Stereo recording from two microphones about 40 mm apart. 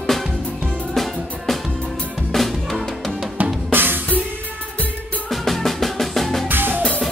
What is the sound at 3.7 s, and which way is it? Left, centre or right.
Drum kit, right.